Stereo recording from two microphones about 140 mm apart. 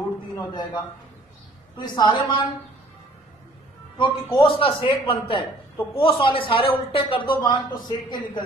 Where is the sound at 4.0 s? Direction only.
30° left (ahead or behind).